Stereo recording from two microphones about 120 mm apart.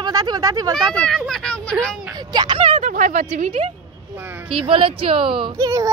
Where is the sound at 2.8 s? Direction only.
90° right.